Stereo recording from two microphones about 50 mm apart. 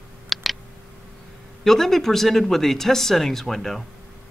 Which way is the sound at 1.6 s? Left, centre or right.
Centre.